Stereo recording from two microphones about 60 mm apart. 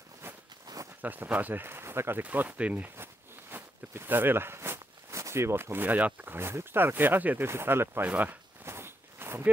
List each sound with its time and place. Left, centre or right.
0.7 s a sound: right
1.0 s speech: right
2.2 s speech: right
3.0 s walk: right
6.3 s speech: right
7.4 s speech: right
8.1 s speech: right
8.6 s walk: right